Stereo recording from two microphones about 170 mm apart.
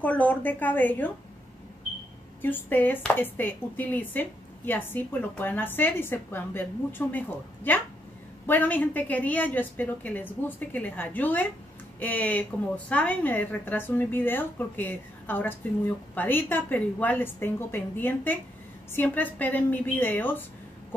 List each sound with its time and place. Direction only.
0.0 s speech: 10° left (ahead or behind)
2.4 s speech: 10° left (ahead or behind)